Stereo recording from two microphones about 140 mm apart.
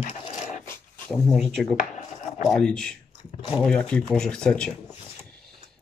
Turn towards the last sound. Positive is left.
turn(degrees=5)  # may be behind; listen again after turning